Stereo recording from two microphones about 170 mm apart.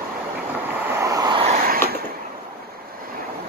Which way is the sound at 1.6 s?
60° right (ahead or behind).